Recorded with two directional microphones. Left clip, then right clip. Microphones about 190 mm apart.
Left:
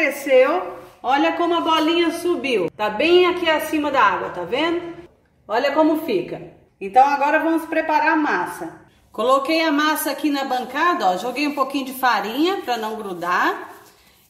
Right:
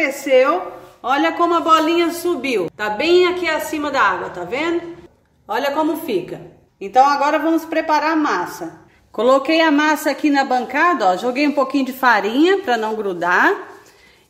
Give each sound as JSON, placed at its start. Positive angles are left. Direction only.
{"t": 0.0, "sound": "a woman's voice", "side_deg": -10}
{"t": 9.1, "sound": "a woman's voice", "side_deg": -25}